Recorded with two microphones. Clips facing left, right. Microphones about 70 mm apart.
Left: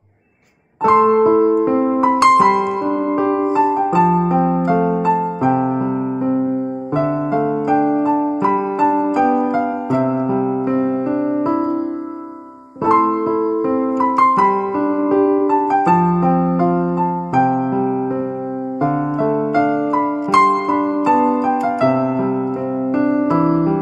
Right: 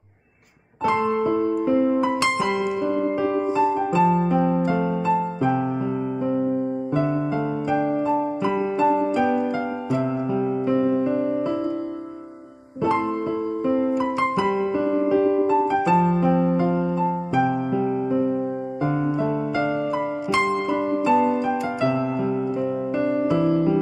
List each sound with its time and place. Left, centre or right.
0.8 s music: left
6.2 s music: left
7.0 s music: left
10.7 s music: left
12.8 s music: left
13.7 s electric piano: left
18.8 s music: left